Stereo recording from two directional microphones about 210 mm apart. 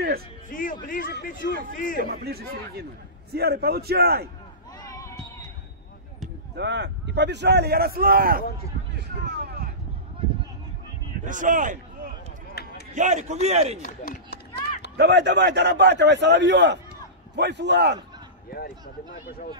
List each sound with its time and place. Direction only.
0.5 s music: 40° left (ahead or behind)
0.8 s a man's voice: 40° left (ahead or behind)
2.0 s a man's voice: 45° right (ahead or behind)
4.8 s a sound: 15° left (ahead or behind)
6.5 s a man's voice: 55° right (ahead or behind)
9.4 s a sound: 50° right (ahead or behind)
11.2 s a man's voice: 40° right (ahead or behind)
12.6 s a sound: 50° left (ahead or behind)
12.9 s a man's voice: 35° right (ahead or behind)
14.0 s run: 45° left (ahead or behind)
15.0 s a man's voice: 55° right (ahead or behind)
18.5 s speech: 45° left (ahead or behind)